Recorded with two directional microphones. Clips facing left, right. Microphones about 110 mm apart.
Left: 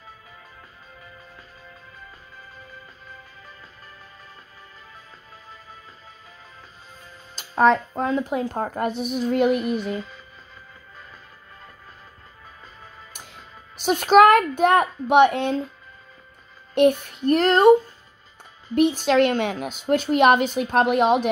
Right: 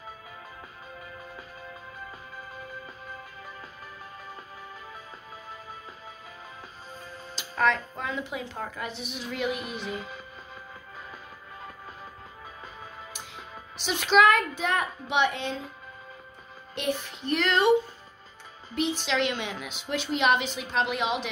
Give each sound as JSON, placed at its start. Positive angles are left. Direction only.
{"t": 7.3, "sound": "a woman's voice", "side_deg": 35}
{"t": 13.7, "sound": "a woman's voice", "side_deg": 45}
{"t": 16.7, "sound": "a woman's voice", "side_deg": 55}
{"t": 18.8, "sound": "a woman's voice", "side_deg": 50}